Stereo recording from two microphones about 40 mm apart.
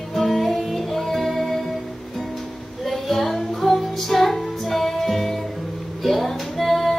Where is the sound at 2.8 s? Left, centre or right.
Centre.